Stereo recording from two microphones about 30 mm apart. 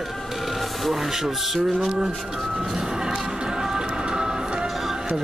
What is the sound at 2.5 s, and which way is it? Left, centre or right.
Music, centre.